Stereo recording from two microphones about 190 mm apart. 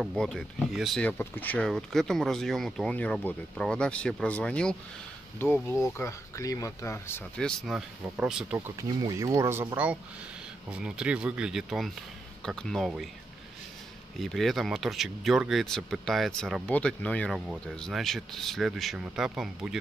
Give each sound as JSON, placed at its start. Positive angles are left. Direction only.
{"t": 0.0, "sound": "speech", "side_deg": 0}
{"t": 14.2, "sound": "speech", "side_deg": 0}